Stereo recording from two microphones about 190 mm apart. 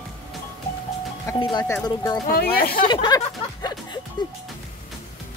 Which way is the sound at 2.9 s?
25° left (ahead or behind).